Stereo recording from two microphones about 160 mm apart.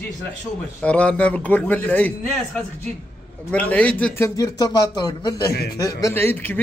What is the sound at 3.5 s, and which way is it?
A man's voice, 10° left (ahead or behind).